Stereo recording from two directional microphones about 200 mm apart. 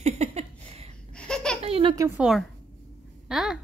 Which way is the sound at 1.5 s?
30° right (ahead or behind).